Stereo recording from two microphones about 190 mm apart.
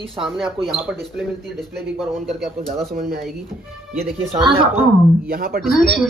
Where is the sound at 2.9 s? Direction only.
55° right (ahead or behind).